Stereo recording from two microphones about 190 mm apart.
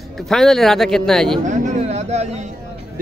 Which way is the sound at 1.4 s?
40° right (ahead or behind).